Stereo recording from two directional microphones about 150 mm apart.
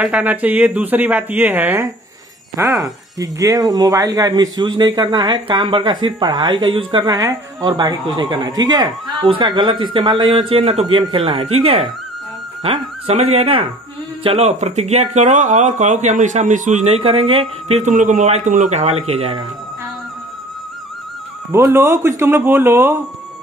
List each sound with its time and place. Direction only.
0.0 s speech: 10° right (ahead or behind); by 19.3 s 40° right (ahead or behind)
21.5 s speech: 15° right (ahead or behind)